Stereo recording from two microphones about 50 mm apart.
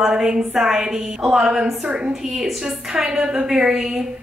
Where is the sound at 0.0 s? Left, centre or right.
Centre.